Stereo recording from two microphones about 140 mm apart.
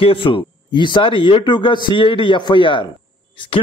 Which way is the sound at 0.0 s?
40° left (ahead or behind).